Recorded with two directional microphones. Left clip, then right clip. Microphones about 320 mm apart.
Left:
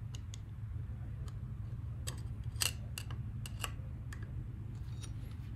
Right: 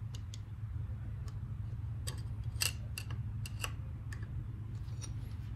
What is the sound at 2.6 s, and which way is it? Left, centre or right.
Scissors, centre.